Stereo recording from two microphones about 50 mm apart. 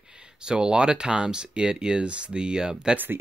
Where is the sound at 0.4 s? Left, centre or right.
Centre.